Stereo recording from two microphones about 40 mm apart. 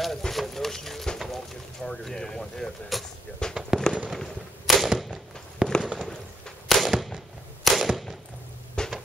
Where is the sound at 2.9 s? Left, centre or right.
Centre.